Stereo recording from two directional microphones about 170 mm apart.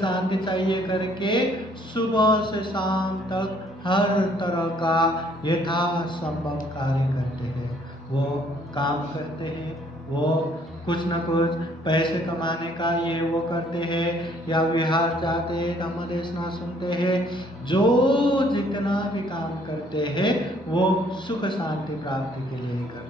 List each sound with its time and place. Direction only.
0.0 s a man's voice: 30° left (ahead or behind)
8.8 s a man's voice: 30° left (ahead or behind)
10.9 s a man's voice: 30° left (ahead or behind)